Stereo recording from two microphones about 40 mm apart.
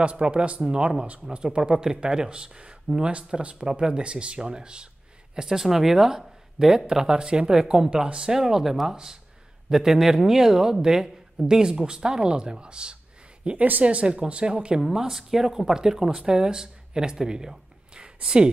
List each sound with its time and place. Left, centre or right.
0.0 s speech: right
8.3 s speech: centre
13.6 s speech: right
13.8 s speech: right
14.8 s speech: centre